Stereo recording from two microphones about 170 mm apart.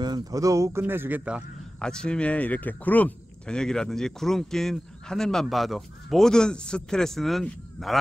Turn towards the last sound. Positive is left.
turn(degrees=0)  # may be behind; listen again after turning